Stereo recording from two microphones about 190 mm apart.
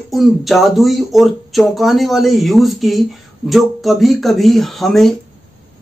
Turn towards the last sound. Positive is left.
turn(degrees=0)  # may be behind; listen again after turning